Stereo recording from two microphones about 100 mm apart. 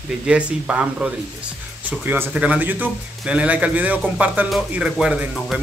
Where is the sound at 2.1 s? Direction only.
15° right (ahead or behind).